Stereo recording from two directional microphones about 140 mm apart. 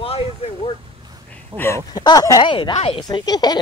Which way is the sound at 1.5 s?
35° right (ahead or behind).